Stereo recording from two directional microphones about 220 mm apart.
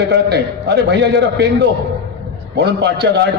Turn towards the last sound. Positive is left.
turn(degrees=-50)  # may be behind; listen again after turning